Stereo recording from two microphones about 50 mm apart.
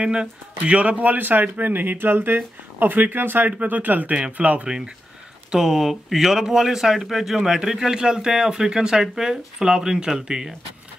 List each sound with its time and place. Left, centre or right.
0.0 s speech: centre
5.5 s speech: centre